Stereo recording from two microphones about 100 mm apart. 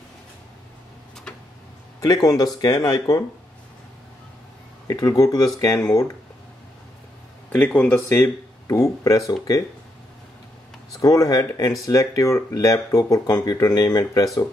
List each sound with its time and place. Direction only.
2.0 s speech: 40° left (ahead or behind)
4.8 s speech: 35° left (ahead or behind)
7.4 s speech: 15° left (ahead or behind)
8.1 s speech: 30° left (ahead or behind)
11.0 s speech: 35° left (ahead or behind)